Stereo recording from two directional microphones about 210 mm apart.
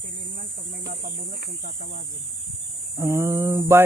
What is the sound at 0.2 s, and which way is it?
Speech, 50° right (ahead or behind).